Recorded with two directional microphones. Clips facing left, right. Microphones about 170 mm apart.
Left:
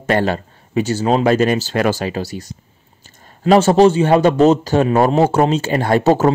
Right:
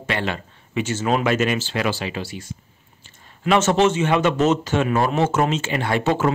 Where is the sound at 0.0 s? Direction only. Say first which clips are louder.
Left 8 dB; 40° left (ahead or behind).